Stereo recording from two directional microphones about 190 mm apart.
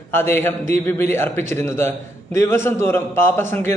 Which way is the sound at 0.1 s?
10° left (ahead or behind).